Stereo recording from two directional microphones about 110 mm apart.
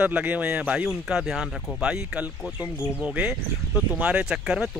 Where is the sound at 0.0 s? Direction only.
15° right (ahead or behind).